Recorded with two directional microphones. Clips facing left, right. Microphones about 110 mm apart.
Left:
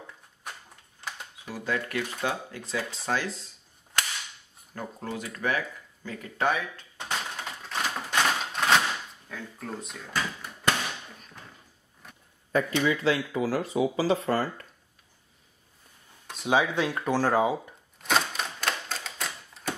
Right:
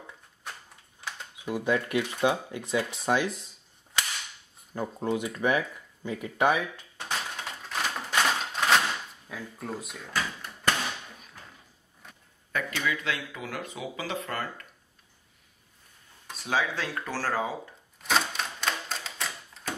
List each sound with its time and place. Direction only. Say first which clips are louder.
1.0 s a sound: right 1 dB; centre (ahead or behind)
1.5 s speech: right 4 dB; 20° right (ahead or behind)
4.7 s speech: right 6 dB; 20° right (ahead or behind)
7.0 s a sound: left 1 dB; centre (ahead or behind)
9.3 s speech: right 1 dB; 5° right (ahead or behind)
12.0 s a sound: left 1 dB; centre (ahead or behind)
12.5 s speech: left 6 dB; 30° left (ahead or behind)
16.4 s speech: left 5 dB; 20° left (ahead or behind)
18.0 s typewriter: left 1 dB; centre (ahead or behind)